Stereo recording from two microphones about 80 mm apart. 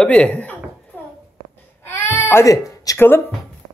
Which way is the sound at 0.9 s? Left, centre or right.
Left.